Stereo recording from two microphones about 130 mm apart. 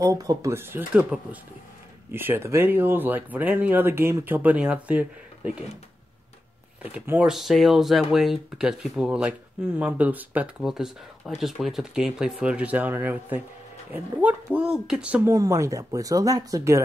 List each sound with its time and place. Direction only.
0.0 s speech: 25° right (ahead or behind); by 5.5 s 10° right (ahead or behind)
6.8 s speech: 10° right (ahead or behind)
15.2 s speech: 25° right (ahead or behind)